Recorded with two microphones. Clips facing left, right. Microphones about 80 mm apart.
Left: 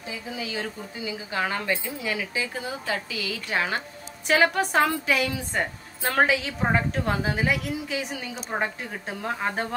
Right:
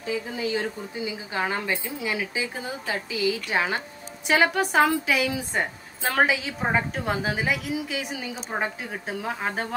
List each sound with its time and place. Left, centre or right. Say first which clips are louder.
0.4 s speech: right 4 dB; right
1.0 s a woman's voice: even; right
4.3 s a woman's voice: even; centre